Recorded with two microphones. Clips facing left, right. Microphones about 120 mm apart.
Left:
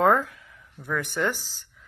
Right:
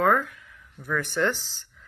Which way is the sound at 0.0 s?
25° left (ahead or behind).